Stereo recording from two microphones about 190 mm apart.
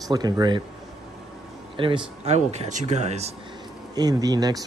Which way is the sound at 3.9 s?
20° right (ahead or behind).